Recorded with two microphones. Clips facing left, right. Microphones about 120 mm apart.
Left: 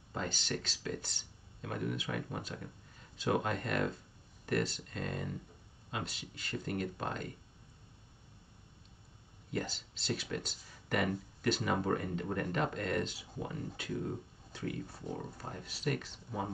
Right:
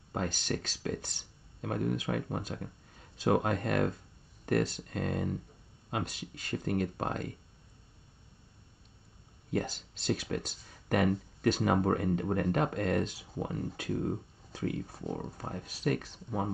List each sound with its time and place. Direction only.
0.1 s speech: 50° right (ahead or behind)
9.5 s speech: 50° right (ahead or behind)